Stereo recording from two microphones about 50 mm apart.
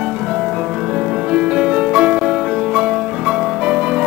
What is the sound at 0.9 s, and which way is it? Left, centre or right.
Music, centre.